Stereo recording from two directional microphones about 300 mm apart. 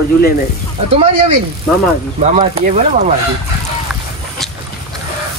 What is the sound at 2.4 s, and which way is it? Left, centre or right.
Speech, right.